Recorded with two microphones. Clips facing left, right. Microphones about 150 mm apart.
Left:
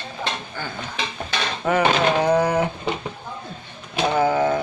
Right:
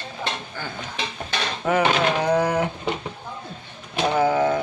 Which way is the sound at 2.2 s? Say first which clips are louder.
Left 2 dB; 5° left (ahead or behind).